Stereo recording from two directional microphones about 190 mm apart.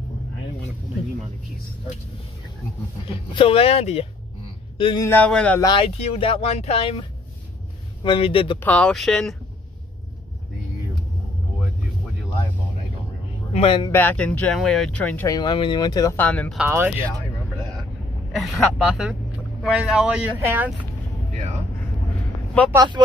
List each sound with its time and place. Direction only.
3.3 s speech: 30° left (ahead or behind)
5.0 s speech: 10° left (ahead or behind)
5.6 s speech: 25° left (ahead or behind)
8.5 s speech: 5° left (ahead or behind)
13.5 s speech: 30° left (ahead or behind)
13.9 s speech: 5° left (ahead or behind)
15.2 s speech: 20° left (ahead or behind); by 16.5 s 5° left (ahead or behind)
16.5 s speech: 10° right (ahead or behind)
18.3 s speech: centre (ahead or behind)
23.0 s speech: 20° right (ahead or behind)